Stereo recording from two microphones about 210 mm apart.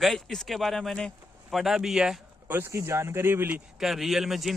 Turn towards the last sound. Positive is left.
turn(degrees=0)  # may be behind; listen again after turning